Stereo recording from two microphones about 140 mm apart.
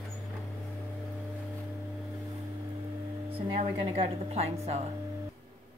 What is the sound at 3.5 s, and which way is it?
A woman's voice, 45° right (ahead or behind).